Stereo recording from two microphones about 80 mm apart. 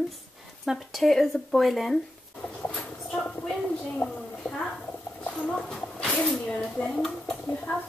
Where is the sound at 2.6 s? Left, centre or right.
Centre.